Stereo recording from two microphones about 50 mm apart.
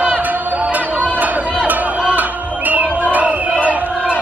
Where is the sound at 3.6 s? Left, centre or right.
Right.